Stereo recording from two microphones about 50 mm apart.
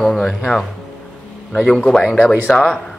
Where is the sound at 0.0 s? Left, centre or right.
Centre.